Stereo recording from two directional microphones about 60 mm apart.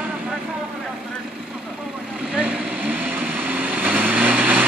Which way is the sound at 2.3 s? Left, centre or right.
Right.